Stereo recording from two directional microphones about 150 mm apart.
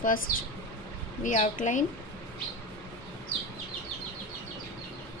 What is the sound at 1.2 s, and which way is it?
Speech, 60° left (ahead or behind).